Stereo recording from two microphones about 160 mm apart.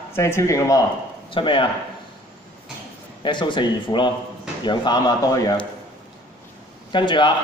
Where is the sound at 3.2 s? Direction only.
30° left (ahead or behind).